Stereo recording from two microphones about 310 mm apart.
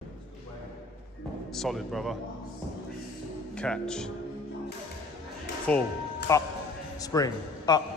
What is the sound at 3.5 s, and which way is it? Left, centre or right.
Speech, centre.